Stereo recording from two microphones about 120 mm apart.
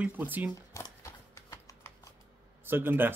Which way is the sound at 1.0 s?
25° left (ahead or behind).